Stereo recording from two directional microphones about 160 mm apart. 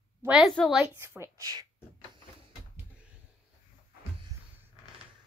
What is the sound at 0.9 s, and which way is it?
Speech, 15° right (ahead or behind).